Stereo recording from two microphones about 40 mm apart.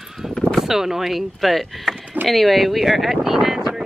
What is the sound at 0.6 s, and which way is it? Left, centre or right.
Speech, centre.